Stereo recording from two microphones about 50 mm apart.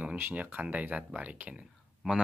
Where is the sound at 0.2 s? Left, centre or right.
Right.